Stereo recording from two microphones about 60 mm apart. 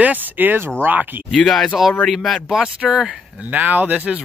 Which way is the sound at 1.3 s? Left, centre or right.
Centre.